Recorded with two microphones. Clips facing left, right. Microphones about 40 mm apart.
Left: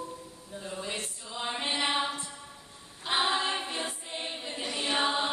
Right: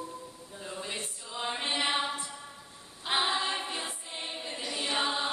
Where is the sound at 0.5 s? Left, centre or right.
Centre.